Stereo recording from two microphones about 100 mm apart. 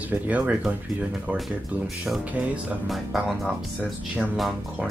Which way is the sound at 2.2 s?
15° right (ahead or behind).